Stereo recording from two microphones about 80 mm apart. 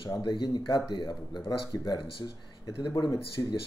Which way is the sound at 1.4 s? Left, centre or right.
Left.